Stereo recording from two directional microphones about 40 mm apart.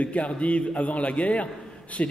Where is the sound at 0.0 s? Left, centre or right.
Left.